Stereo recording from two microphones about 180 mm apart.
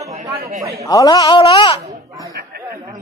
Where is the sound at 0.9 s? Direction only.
20° left (ahead or behind).